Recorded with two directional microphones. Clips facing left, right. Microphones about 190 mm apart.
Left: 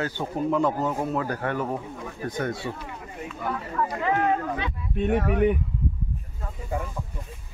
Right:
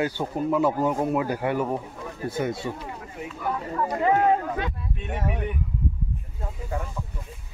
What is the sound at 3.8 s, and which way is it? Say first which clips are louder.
Speech: right 3 dB; 35° right (ahead or behind).